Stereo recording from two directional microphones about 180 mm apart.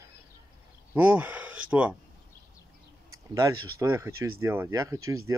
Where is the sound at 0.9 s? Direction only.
10° right (ahead or behind).